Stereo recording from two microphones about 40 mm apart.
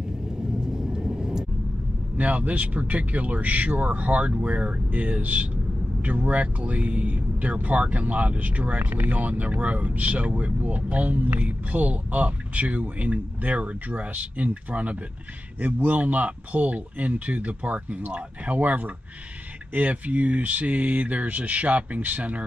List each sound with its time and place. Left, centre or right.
0.6 s vehicle: centre
2.1 s speech: right
9.2 s speech: right